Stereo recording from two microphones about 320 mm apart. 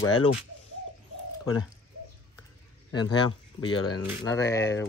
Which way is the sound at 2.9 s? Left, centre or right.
Centre.